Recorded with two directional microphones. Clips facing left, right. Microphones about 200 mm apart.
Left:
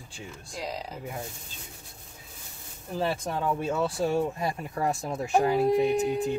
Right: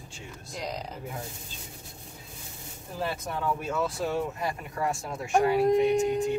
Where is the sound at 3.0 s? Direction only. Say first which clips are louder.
Left 3 dB; 25° left (ahead or behind).